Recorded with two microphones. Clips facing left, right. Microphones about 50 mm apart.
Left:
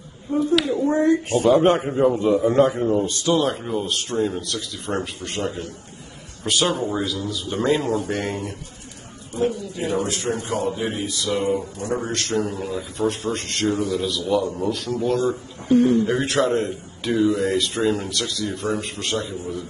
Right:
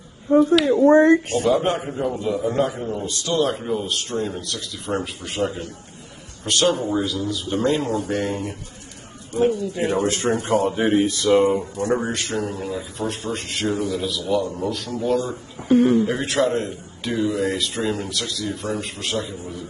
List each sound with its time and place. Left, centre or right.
0.8 s speech: right
1.4 s a man's voice: left
3.3 s a man's voice: centre
9.4 s speech: right
10.0 s speech: right
12.1 s a man's voice: centre